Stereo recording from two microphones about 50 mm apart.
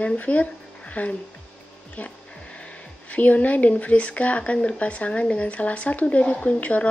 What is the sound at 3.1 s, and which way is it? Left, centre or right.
Speech, left.